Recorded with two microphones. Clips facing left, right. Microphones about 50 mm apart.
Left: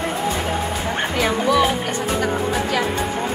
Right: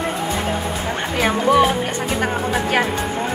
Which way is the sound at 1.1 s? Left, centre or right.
Right.